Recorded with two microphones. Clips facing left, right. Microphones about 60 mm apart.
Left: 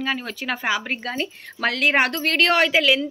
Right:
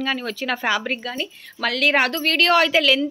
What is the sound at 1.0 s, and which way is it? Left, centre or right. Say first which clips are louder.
Speech: left 1 dB; left.